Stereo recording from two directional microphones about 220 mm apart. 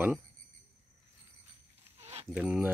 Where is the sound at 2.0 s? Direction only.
30° right (ahead or behind).